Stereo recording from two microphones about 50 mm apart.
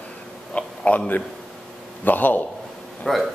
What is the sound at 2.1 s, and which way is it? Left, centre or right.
Speech, left.